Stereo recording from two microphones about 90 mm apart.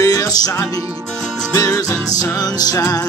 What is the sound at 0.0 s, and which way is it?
Music, 40° left (ahead or behind).